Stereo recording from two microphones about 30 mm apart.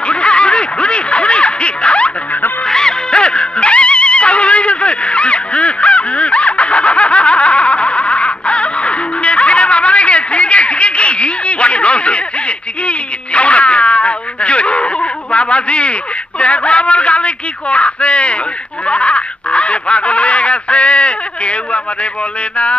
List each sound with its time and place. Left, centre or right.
0.1 s snicker: left
2.6 s music: left
18.9 s a sound: left